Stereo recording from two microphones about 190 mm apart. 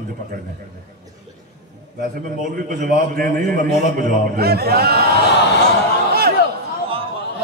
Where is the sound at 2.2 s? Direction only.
45° right (ahead or behind).